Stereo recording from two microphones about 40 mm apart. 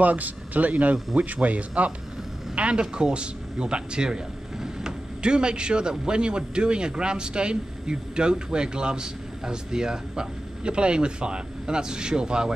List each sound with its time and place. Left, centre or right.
0.0 s speech: right
5.2 s speech: right